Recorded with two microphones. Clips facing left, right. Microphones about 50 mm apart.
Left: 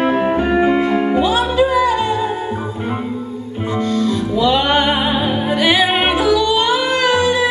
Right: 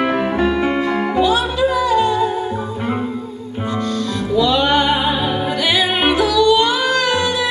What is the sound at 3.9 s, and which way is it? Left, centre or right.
Music, left.